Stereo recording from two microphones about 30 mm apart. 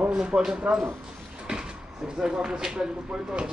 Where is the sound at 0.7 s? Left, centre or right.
Right.